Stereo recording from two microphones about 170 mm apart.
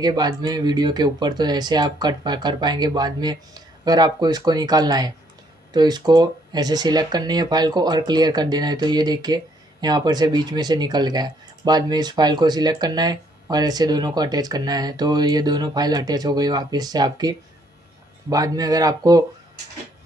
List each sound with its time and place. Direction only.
0.0 s speech: 25° right (ahead or behind)